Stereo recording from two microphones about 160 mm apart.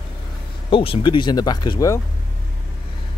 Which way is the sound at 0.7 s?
35° left (ahead or behind).